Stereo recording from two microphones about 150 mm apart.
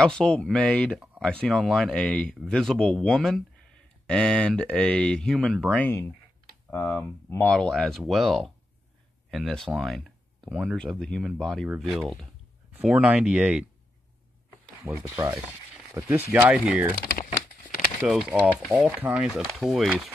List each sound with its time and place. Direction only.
0.0 s speech: 5° left (ahead or behind)
5.9 s speech: 15° left (ahead or behind)
7.6 s speech: centre (ahead or behind)
12.7 s speech: 10° right (ahead or behind)
14.8 s speech: 15° right (ahead or behind)
18.0 s speech: 5° right (ahead or behind)